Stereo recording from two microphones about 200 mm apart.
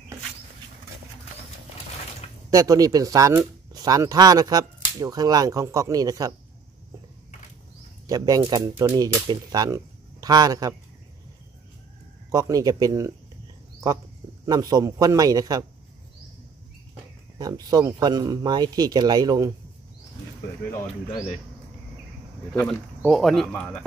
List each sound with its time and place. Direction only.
2.5 s speech: 15° right (ahead or behind)
8.1 s speech: 20° right (ahead or behind)
12.3 s speech: 15° right (ahead or behind)
14.4 s speech: 20° right (ahead or behind)
17.4 s speech: 20° right (ahead or behind)
22.5 s speech: centre (ahead or behind)